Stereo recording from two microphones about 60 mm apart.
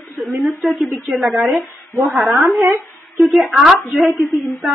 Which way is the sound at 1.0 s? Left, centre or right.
Centre.